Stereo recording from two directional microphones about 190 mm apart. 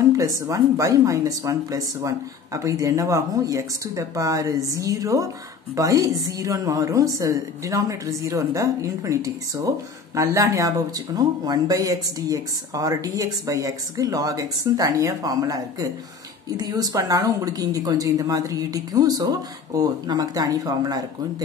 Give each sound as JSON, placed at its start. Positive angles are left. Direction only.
{"t": 0.2, "sound": "speech", "side_deg": -15}